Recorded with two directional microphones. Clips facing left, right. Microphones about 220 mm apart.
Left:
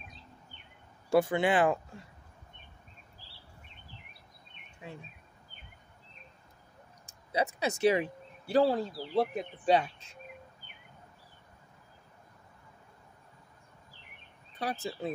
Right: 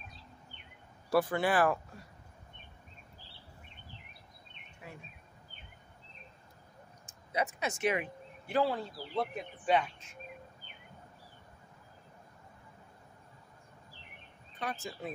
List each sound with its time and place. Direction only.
1.1 s speech: 25° left (ahead or behind)
4.8 s bird: 25° left (ahead or behind)
7.3 s speech: 35° left (ahead or behind)
14.6 s speech: 35° left (ahead or behind)